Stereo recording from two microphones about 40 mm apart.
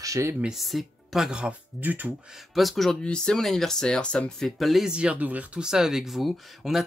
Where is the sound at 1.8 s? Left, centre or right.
Right.